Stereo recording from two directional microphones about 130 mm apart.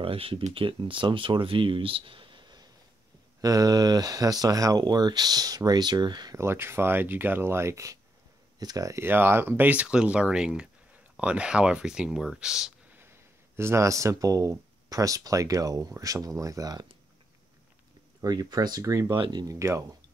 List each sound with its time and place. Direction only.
0.0 s speech: 45° right (ahead or behind)
6.3 s speech: 20° right (ahead or behind)
13.6 s speech: 20° right (ahead or behind)
18.2 s speech: 30° right (ahead or behind)
19.1 s speech: 40° right (ahead or behind)
19.4 s speech: 25° right (ahead or behind)